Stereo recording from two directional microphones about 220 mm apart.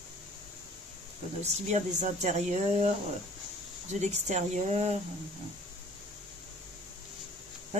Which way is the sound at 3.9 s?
30° right (ahead or behind).